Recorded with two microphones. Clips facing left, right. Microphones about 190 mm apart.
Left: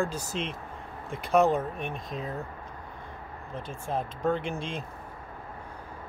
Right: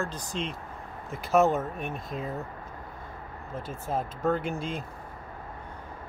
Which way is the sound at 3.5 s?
5° right (ahead or behind).